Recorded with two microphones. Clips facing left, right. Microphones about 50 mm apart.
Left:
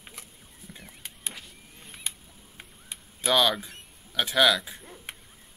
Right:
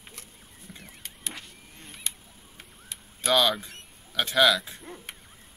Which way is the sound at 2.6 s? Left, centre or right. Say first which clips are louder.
Left 1 dB; centre.